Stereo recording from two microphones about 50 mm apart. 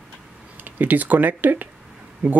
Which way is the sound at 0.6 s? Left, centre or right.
Right.